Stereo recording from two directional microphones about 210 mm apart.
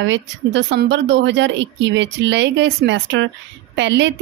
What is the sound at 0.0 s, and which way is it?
Speech, 60° right (ahead or behind).